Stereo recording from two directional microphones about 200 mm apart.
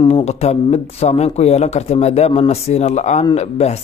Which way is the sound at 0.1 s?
35° left (ahead or behind).